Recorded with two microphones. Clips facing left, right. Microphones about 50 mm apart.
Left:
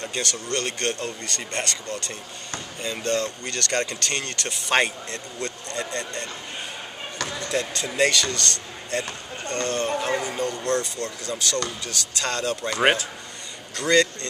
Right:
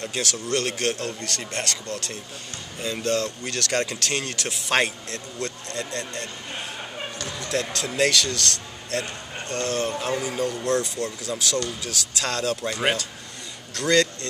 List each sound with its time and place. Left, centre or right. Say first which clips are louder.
0.0 s speech: right 1 dB; centre
7.4 s speech: right 1 dB; centre
12.7 s speech: left 7 dB; left
13.7 s speech: left 1 dB; centre